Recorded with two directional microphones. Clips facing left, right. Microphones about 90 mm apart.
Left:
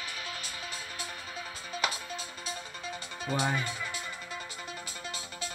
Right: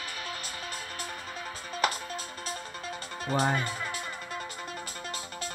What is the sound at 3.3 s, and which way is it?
Speech, 45° right (ahead or behind).